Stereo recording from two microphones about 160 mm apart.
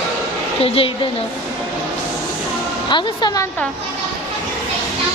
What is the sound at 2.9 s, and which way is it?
Speech, 30° left (ahead or behind).